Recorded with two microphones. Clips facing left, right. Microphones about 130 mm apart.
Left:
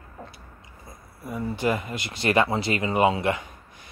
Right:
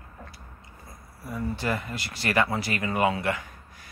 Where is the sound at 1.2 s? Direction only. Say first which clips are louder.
Left 3 dB; 15° left (ahead or behind).